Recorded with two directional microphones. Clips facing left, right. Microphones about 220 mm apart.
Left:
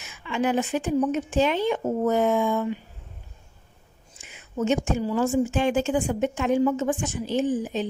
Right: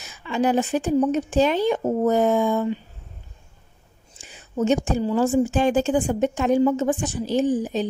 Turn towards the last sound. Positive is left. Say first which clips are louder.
# right 3 dB
turn(degrees=-35)  # may be behind; listen again after turning